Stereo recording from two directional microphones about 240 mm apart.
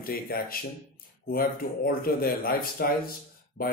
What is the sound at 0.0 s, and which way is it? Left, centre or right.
A man's voice, left.